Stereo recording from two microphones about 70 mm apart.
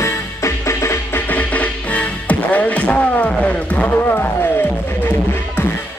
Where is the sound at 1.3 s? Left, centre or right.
Left.